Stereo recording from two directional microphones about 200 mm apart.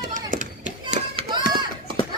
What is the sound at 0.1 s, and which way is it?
Children playing, 40° right (ahead or behind).